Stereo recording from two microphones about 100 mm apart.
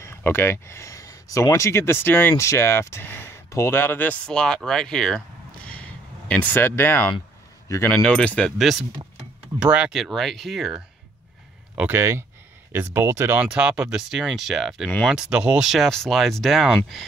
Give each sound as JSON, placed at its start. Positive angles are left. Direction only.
{"t": 0.0, "sound": "speech", "side_deg": 25}
{"t": 5.7, "sound": "a sound", "side_deg": 15}
{"t": 7.6, "sound": "speech", "side_deg": 30}
{"t": 7.9, "sound": "speech", "side_deg": 10}
{"t": 8.5, "sound": "speech", "side_deg": 0}
{"t": 9.9, "sound": "speech", "side_deg": 0}
{"t": 11.7, "sound": "speech", "side_deg": -15}
{"t": 12.0, "sound": "speech", "side_deg": -25}
{"t": 13.5, "sound": "speech", "side_deg": -10}